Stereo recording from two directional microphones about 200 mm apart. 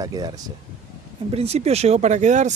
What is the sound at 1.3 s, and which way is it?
Speech, 30° right (ahead or behind).